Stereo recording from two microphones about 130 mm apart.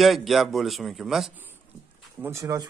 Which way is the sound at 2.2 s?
20° right (ahead or behind).